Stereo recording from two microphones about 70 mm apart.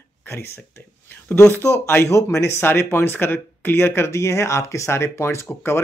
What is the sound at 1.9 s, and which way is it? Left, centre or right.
Speech, left.